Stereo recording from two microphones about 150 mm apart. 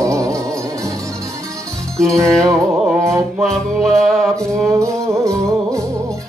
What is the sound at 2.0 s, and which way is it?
Music, 20° right (ahead or behind).